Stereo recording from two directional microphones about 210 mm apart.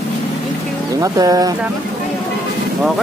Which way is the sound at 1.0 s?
15° right (ahead or behind).